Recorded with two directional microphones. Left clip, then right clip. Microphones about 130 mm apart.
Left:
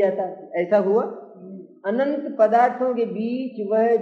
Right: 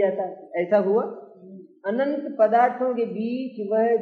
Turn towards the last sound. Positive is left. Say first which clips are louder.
# left 2 dB
turn(degrees=30)  # may be behind; listen again after turning